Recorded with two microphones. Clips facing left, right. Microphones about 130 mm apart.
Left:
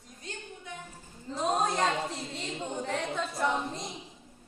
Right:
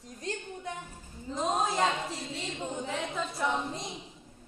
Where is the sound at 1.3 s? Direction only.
Centre (ahead or behind).